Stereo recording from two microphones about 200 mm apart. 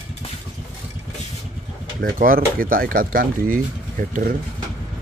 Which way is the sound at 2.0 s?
45° right (ahead or behind).